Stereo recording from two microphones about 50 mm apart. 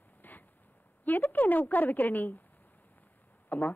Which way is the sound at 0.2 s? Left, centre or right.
Left.